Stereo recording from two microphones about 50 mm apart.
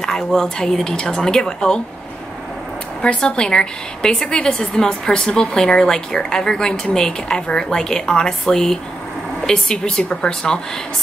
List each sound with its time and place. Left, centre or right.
0.0 s a woman's voice: centre
3.2 s a woman's voice: centre